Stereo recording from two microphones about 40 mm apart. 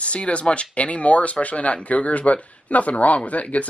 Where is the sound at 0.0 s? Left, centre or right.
Left.